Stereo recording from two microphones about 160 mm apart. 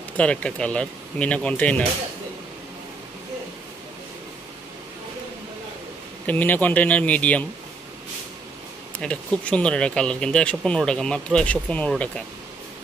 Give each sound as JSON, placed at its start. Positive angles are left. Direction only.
{"t": 0.2, "sound": "speech", "side_deg": 5}
{"t": 6.2, "sound": "speech", "side_deg": 10}
{"t": 9.0, "sound": "speech", "side_deg": 5}